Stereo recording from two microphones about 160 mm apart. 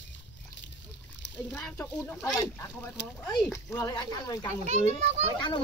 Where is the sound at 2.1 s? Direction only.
Centre (ahead or behind).